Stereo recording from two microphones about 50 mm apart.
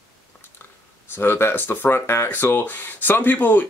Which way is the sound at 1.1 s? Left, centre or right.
Left.